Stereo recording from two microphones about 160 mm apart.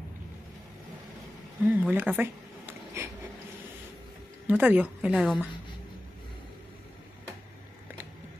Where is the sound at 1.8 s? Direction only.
10° right (ahead or behind).